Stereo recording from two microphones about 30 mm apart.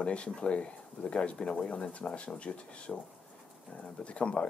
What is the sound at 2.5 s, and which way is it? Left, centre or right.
Speech, left.